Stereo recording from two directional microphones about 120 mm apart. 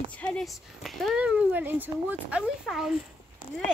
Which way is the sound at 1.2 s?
10° right (ahead or behind).